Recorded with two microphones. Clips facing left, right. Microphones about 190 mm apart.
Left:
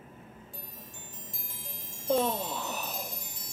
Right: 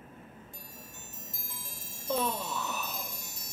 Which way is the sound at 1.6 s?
30° left (ahead or behind).